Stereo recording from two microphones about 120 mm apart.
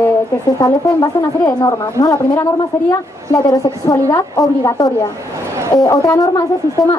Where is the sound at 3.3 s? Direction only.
30° left (ahead or behind).